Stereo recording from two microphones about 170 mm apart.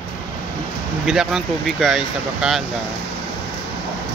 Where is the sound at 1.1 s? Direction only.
Centre (ahead or behind).